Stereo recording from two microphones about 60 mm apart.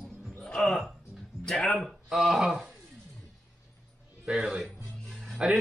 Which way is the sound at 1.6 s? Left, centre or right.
Centre.